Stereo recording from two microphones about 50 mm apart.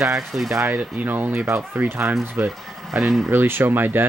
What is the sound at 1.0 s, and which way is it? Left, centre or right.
Speech, right.